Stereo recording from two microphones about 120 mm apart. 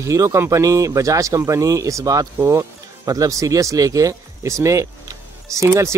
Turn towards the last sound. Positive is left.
turn(degrees=-25)  # may be behind; listen again after turning